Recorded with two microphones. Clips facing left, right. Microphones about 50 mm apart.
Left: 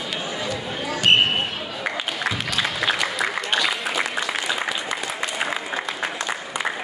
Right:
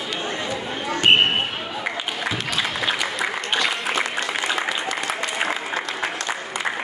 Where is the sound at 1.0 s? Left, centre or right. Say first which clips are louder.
Right 1 dB; centre.